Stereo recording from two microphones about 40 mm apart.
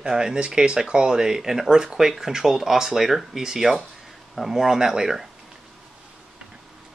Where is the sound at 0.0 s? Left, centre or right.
Centre.